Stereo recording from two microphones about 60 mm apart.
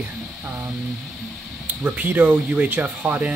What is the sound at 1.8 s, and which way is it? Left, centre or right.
Speech, right.